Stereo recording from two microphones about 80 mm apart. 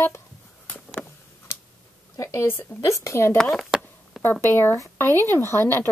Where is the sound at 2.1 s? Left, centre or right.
Left.